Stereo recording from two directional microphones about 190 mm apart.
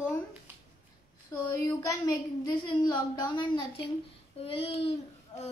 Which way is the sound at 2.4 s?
25° left (ahead or behind).